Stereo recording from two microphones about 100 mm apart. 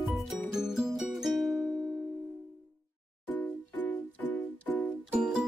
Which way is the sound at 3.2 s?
20° left (ahead or behind).